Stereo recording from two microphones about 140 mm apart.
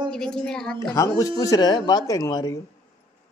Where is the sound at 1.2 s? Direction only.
25° left (ahead or behind).